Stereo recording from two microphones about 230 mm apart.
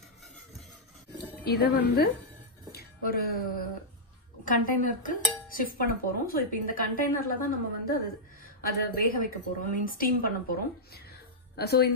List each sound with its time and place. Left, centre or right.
1.4 s a woman's voice: left
4.5 s dishes: left
8.6 s dishes: left
11.5 s a woman's voice: left